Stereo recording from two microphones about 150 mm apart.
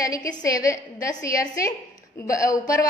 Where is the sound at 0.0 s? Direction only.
25° left (ahead or behind).